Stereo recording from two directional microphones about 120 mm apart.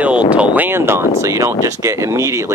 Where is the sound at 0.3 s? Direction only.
10° right (ahead or behind).